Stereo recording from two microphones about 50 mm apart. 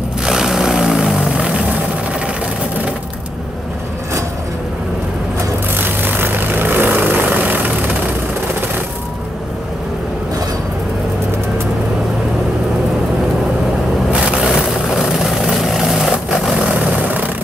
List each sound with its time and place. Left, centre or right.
0.2 s vehicle: centre
1.3 s vehicle: right
5.8 s vehicle: right
14.2 s vehicle: centre
14.5 s vehicle: centre
16.6 s vehicle: right